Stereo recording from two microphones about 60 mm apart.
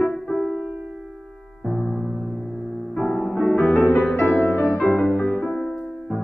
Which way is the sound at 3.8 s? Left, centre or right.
Left.